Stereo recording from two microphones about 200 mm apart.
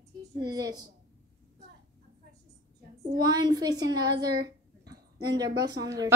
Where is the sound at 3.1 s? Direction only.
20° right (ahead or behind).